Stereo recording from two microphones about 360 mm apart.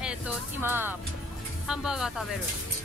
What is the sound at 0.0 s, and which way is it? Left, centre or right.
Music, centre.